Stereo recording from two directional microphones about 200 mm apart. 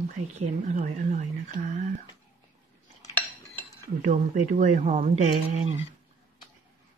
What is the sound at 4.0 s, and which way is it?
Speech, 40° right (ahead or behind).